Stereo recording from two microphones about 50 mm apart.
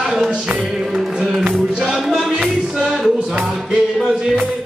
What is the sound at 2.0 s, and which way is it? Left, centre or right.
Music, centre.